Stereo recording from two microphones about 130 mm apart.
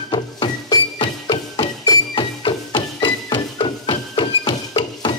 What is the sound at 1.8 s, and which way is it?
Music, 35° left (ahead or behind).